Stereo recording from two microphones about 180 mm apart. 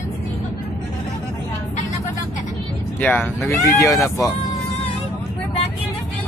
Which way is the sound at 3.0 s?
10° left (ahead or behind).